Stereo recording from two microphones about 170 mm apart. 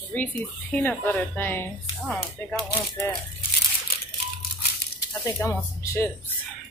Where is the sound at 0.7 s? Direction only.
10° left (ahead or behind).